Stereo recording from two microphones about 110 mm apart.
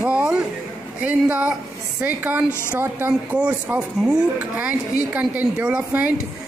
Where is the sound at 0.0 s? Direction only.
10° right (ahead or behind).